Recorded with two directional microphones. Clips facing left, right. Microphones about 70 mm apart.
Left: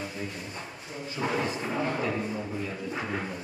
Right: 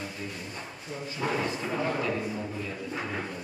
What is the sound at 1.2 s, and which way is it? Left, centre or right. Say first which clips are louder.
Speech: left 1 dB; centre.